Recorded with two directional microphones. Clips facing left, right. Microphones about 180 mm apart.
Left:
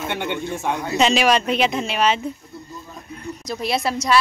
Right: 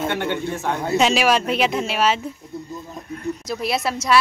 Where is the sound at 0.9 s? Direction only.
5° right (ahead or behind).